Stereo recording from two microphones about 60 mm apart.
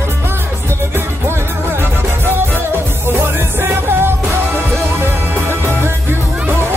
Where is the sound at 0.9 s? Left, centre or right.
Right.